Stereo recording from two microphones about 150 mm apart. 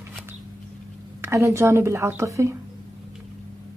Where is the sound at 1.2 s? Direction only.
20° right (ahead or behind).